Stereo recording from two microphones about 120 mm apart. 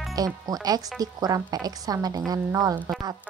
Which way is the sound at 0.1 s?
30° right (ahead or behind).